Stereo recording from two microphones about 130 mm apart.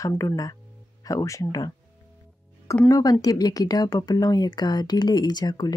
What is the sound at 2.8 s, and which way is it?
Speech, 30° left (ahead or behind).